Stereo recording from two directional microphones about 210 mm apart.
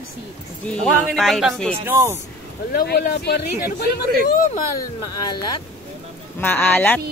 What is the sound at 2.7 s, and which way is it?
Speech, 45° left (ahead or behind).